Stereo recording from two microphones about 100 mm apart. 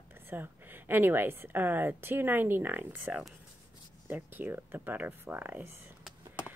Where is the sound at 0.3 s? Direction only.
20° right (ahead or behind).